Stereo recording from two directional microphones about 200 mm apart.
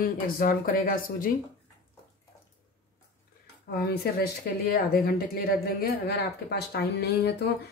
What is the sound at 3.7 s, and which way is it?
A woman's voice, 50° left (ahead or behind).